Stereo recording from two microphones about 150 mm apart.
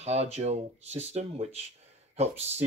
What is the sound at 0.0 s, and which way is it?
Speech, 45° right (ahead or behind).